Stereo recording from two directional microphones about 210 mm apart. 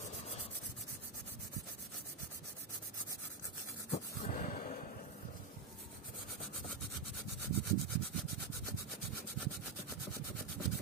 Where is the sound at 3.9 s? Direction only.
40° left (ahead or behind).